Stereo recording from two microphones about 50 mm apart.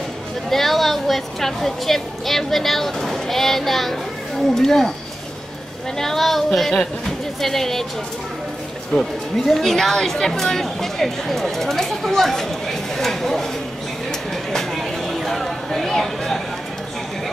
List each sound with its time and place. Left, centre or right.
0.5 s a woman's voice: centre
5.9 s a woman's voice: centre
8.9 s speech: centre
14.3 s a sound: centre